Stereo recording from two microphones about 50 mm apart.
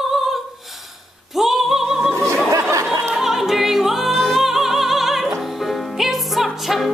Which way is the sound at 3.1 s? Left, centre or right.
Centre.